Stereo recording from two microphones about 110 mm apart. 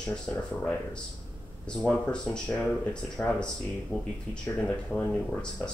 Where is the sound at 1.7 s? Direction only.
10° left (ahead or behind).